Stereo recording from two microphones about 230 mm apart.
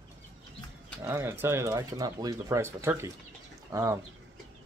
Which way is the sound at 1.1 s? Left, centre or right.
Centre.